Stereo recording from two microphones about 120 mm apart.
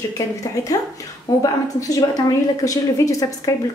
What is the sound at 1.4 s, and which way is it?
A woman's voice, 30° left (ahead or behind).